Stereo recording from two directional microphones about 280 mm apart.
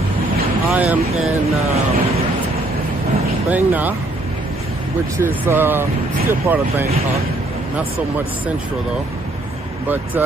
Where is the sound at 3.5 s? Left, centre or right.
Centre.